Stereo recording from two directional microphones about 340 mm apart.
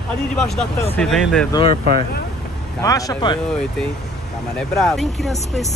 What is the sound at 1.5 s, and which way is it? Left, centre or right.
Speech, centre.